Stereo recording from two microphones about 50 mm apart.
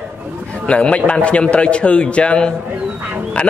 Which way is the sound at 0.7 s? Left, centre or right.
Left.